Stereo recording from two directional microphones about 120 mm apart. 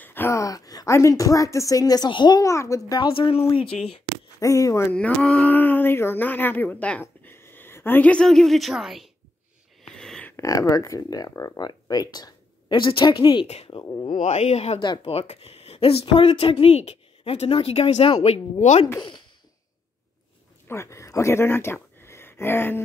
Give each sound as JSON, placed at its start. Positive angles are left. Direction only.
{"t": 0.0, "sound": "speech", "side_deg": 15}
{"t": 3.0, "sound": "speech", "side_deg": 50}
{"t": 4.4, "sound": "speech", "side_deg": 30}
{"t": 4.9, "sound": "speech", "side_deg": 10}
{"t": 9.8, "sound": "a sound", "side_deg": 5}
{"t": 10.3, "sound": "speech", "side_deg": 30}
{"t": 14.1, "sound": "a woman's voice", "side_deg": 70}
{"t": 18.9, "sound": "speech", "side_deg": 40}
{"t": 20.6, "sound": "speech", "side_deg": 20}